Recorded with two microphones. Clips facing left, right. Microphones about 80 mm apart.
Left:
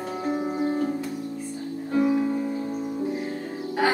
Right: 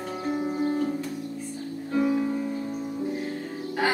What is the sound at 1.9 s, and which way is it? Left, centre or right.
Music, centre.